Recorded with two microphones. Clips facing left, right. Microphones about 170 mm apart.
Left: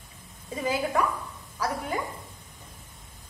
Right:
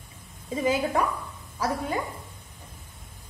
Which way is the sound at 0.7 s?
25° right (ahead or behind).